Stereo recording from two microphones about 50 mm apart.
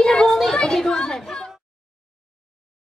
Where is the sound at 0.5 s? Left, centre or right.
Centre.